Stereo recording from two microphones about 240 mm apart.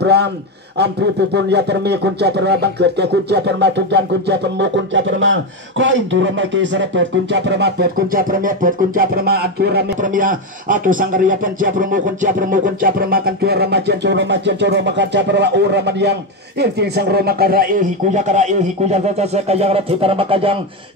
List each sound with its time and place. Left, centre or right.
0.0 s a man's voice: right
1.3 s speech: right